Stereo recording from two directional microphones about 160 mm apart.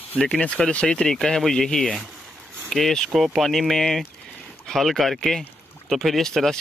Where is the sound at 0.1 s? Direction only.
5° left (ahead or behind).